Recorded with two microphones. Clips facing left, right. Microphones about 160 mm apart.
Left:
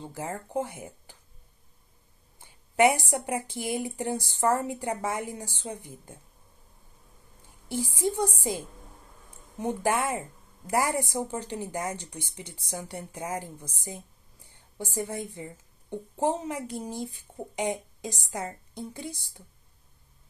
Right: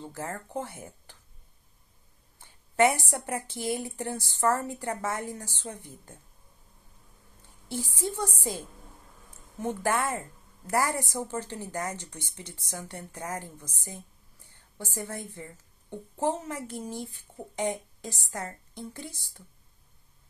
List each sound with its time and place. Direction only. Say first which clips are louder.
0.0 s a woman's voice: left 1 dB; 15° left (ahead or behind)
2.4 s a sound: left 1 dB; 15° left (ahead or behind)
3.1 s a woman's voice: left 3 dB; 15° left (ahead or behind)
7.6 s a woman's voice: left 4 dB; 15° left (ahead or behind)